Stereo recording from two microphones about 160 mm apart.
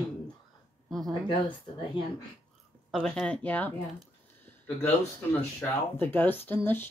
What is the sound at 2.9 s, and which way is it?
Speech, 5° left (ahead or behind).